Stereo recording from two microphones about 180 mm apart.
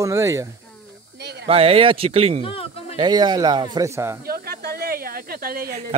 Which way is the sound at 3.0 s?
25° right (ahead or behind).